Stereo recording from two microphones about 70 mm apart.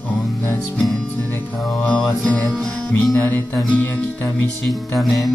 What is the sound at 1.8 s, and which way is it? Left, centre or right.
Music, left.